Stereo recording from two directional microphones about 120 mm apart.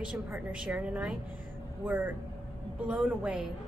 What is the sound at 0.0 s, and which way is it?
Speech, 10° right (ahead or behind).